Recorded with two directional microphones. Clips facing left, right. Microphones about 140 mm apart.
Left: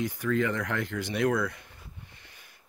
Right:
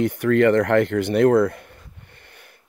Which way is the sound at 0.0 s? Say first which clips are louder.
Right 11 dB; 65° right (ahead or behind).